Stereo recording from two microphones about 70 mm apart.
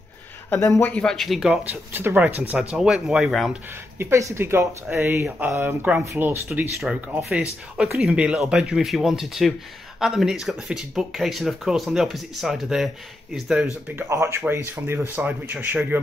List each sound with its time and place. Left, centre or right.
0.9 s speech: centre
1.5 s speech: right; by 3.5 s centre
4.0 s speech: right
7.3 s speech: centre
13.9 s speech: right